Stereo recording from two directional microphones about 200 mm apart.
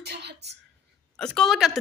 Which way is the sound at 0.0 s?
55° right (ahead or behind).